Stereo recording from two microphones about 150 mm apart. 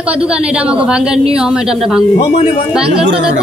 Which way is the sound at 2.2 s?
45° left (ahead or behind).